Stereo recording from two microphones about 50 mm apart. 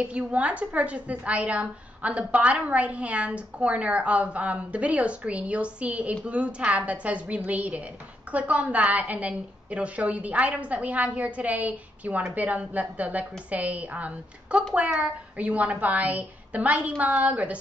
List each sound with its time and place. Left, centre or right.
0.0 s a woman's voice: right